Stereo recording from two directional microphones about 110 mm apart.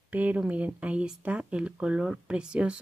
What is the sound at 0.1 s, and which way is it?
Speech, 15° right (ahead or behind).